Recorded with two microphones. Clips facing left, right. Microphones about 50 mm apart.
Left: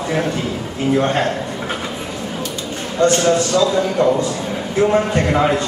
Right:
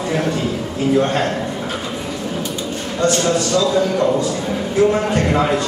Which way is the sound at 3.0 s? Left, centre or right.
Left.